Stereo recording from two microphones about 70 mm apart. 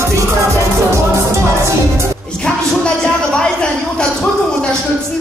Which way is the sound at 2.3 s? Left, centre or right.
Centre.